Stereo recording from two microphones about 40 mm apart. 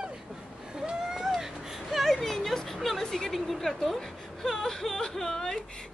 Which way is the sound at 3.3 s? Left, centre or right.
Centre.